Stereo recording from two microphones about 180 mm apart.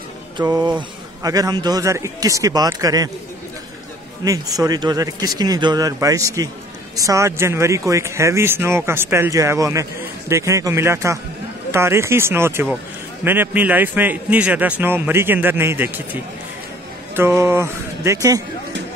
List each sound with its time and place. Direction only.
0.4 s a man's voice: 25° right (ahead or behind)
4.2 s a man's voice: 20° right (ahead or behind)